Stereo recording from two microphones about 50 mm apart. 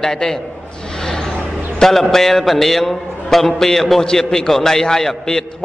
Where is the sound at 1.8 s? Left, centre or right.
Centre.